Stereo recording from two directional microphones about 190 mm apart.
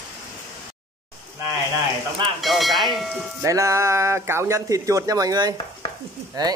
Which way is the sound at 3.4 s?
15° right (ahead or behind).